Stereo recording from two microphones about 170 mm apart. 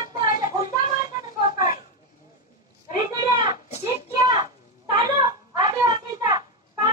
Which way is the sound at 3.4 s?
40° left (ahead or behind).